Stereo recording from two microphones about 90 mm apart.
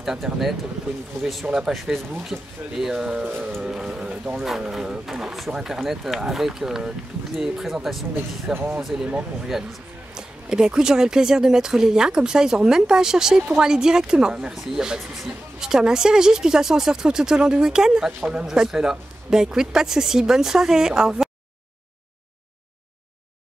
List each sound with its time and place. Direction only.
0.0 s speech: 5° right (ahead or behind)
3.3 s music: 20° right (ahead or behind)
3.6 s speech: 10° right (ahead or behind)
8.5 s speech: 15° right (ahead or behind)
8.8 s speech: 5° right (ahead or behind)